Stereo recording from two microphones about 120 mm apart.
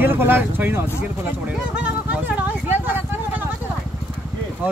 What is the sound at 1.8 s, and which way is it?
Vehicle, 10° right (ahead or behind).